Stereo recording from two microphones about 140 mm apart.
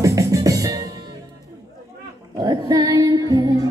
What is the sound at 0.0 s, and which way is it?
Music, 25° right (ahead or behind).